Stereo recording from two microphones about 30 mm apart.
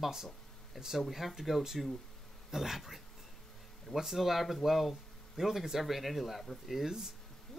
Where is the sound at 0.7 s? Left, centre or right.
Centre.